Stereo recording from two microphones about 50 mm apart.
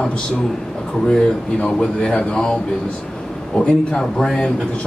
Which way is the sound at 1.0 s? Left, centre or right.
Centre.